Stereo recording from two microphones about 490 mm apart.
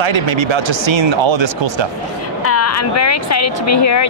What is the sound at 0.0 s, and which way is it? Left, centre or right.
Speech, right.